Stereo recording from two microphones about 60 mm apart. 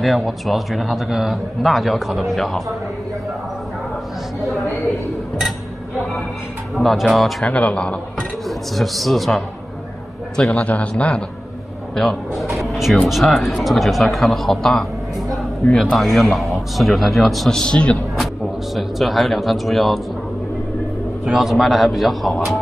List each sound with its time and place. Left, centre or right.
0.0 s a man's voice: centre
6.8 s a man's voice: centre
7.4 s a man's voice: centre
8.5 s a man's voice: centre
10.5 s a man's voice: left
11.9 s a man's voice: centre
18.8 s a man's voice: centre
21.3 s a man's voice: centre